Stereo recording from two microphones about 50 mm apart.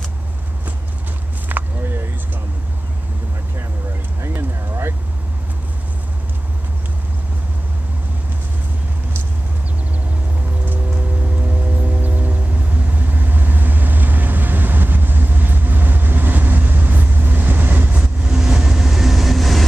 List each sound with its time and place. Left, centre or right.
1.5 s a sound: right
10.6 s vehicle: right
17.9 s vehicle: right; by 19.6 s centre